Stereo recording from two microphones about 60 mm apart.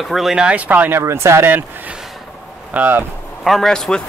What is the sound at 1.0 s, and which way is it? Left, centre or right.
Speech, right.